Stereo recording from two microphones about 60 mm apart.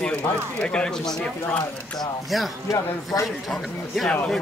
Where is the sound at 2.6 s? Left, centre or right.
Left.